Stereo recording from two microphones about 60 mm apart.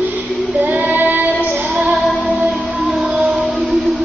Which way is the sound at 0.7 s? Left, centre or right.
Right.